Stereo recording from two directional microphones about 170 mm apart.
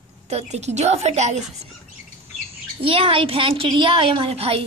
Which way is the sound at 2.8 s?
35° right (ahead or behind).